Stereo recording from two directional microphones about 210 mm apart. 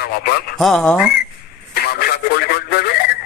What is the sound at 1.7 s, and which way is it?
Radio, 45° left (ahead or behind).